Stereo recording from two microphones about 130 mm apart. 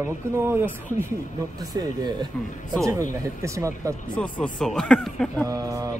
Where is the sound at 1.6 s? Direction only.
30° right (ahead or behind).